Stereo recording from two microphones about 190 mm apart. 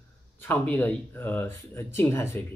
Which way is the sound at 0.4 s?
10° left (ahead or behind).